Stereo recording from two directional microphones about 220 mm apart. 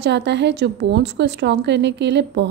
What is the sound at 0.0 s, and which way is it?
Speech, 50° right (ahead or behind).